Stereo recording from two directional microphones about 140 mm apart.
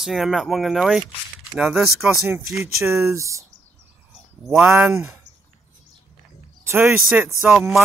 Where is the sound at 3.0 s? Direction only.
20° right (ahead or behind).